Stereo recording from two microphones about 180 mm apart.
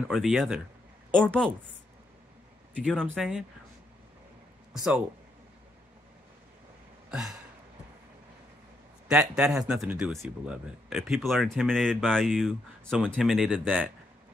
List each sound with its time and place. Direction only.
0.1 s speech: centre (ahead or behind)
2.7 s speech: 5° left (ahead or behind)
4.7 s speech: centre (ahead or behind)
7.1 s a sound: 5° right (ahead or behind)
9.0 s speech: 5° right (ahead or behind)